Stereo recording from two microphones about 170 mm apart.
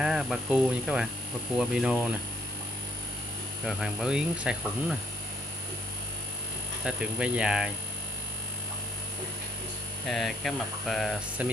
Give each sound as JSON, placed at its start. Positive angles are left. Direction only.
{"t": 0.0, "sound": "speech", "side_deg": -5}
{"t": 3.6, "sound": "speech", "side_deg": -5}
{"t": 6.8, "sound": "speech", "side_deg": -5}
{"t": 10.0, "sound": "speech", "side_deg": 0}